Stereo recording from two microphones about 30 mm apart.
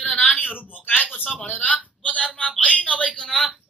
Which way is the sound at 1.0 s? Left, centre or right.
Right.